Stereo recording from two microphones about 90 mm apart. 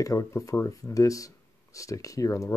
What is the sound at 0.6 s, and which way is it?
Speech, 40° left (ahead or behind).